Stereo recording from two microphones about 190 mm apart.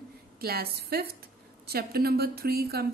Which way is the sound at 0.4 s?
55° right (ahead or behind).